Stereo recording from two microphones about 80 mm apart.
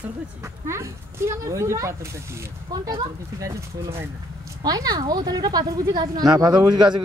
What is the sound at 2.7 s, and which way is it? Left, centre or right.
Speech, right.